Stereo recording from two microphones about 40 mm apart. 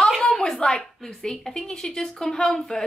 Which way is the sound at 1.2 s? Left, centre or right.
Centre.